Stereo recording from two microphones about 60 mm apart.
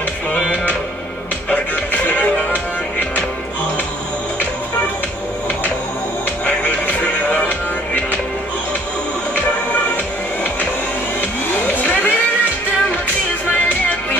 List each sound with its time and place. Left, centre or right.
1.5 s music: left
6.4 s music: left
11.1 s vehicle: left